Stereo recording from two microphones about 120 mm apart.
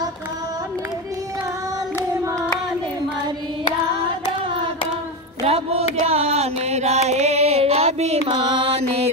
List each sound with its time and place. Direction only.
5.4 s music: 60° right (ahead or behind)